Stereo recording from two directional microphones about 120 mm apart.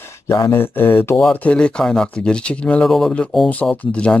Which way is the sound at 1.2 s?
10° left (ahead or behind).